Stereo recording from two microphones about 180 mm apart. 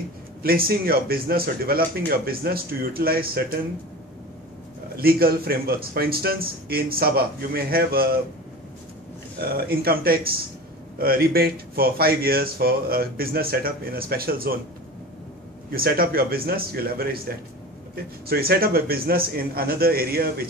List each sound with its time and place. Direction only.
0.4 s speech: 55° right (ahead or behind)
4.9 s speech: 55° right (ahead or behind)
9.4 s speech: 55° right (ahead or behind)
15.7 s speech: 55° right (ahead or behind)